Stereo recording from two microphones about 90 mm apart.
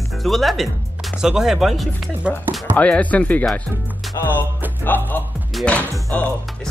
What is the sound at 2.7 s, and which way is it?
Speech, 15° left (ahead or behind).